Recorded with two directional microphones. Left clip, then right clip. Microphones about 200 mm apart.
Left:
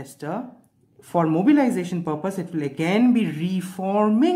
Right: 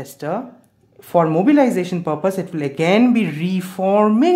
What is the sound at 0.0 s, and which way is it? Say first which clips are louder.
Speech: right 6 dB; 10° right (ahead or behind).